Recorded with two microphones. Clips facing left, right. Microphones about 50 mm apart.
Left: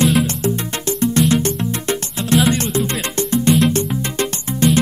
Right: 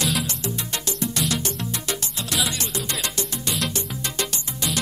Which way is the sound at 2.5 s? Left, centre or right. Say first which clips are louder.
Left 9 dB; left.